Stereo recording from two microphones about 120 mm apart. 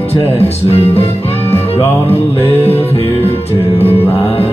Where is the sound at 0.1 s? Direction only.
60° left (ahead or behind).